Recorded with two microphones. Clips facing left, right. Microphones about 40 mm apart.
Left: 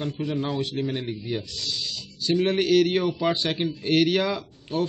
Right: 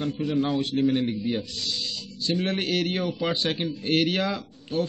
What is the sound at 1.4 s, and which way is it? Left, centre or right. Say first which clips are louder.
Speech: right 1 dB; right.